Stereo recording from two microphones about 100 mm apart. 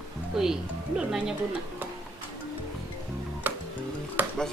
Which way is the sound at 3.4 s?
20° right (ahead or behind).